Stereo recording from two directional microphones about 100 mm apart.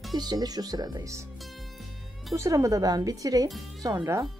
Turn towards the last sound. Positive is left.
turn(degrees=-35)  # may be behind; listen again after turning